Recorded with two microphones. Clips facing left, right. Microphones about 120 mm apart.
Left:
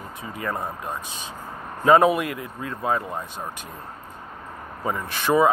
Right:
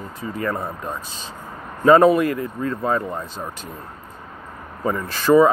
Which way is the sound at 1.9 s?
5° left (ahead or behind).